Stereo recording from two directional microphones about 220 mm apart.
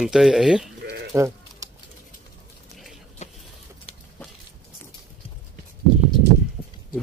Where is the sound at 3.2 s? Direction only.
30° left (ahead or behind).